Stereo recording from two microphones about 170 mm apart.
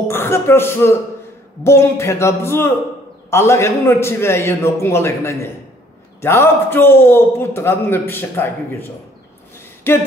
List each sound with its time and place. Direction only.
0.1 s a man's voice: 15° left (ahead or behind)
9.9 s a man's voice: 15° left (ahead or behind)